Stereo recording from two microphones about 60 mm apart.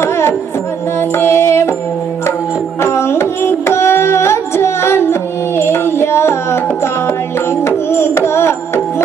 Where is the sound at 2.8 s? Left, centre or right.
Left.